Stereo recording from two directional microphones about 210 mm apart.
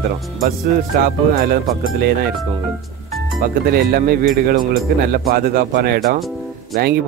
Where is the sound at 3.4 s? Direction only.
45° right (ahead or behind).